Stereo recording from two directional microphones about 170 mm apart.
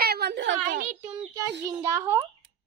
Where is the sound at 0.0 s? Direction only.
70° right (ahead or behind); by 0.6 s 90° right.